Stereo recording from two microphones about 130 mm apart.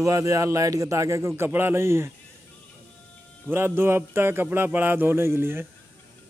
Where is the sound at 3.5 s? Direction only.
15° right (ahead or behind).